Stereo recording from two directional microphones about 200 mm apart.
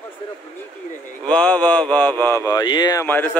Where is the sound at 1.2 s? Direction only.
5° left (ahead or behind).